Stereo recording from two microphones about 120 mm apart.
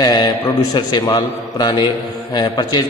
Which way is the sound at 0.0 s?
35° left (ahead or behind).